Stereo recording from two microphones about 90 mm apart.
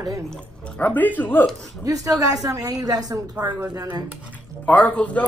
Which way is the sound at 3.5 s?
20° right (ahead or behind).